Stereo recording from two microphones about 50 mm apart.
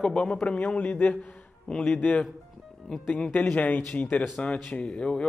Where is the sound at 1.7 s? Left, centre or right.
Centre.